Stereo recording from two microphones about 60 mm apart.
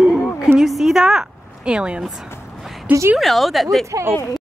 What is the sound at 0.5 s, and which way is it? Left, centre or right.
A woman's voice, centre.